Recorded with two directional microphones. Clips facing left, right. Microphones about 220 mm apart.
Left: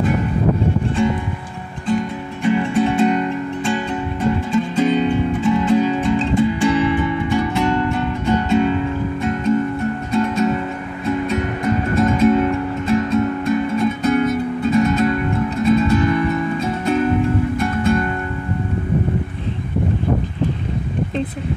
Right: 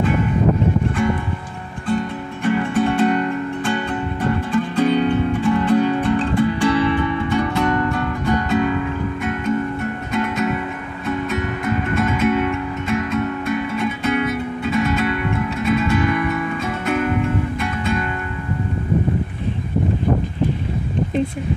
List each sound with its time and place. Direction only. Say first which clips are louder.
2.5 s music: left 1 dB; 10° left (ahead or behind)
4.7 s music: even; 10° left (ahead or behind); by 17.1 s 30° left (ahead or behind)
17.6 s music: left 5 dB; 45° left (ahead or behind)